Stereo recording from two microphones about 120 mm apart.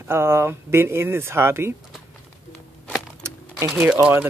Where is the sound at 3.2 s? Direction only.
25° right (ahead or behind).